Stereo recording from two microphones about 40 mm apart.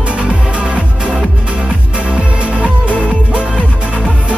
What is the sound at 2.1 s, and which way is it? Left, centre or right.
Music, right.